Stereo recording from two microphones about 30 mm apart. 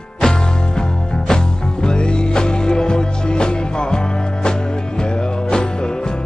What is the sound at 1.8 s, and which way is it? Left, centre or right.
Music, left.